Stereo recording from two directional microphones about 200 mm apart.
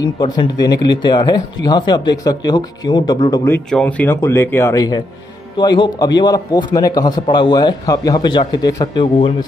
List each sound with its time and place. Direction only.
0.0 s a man's voice: 20° left (ahead or behind)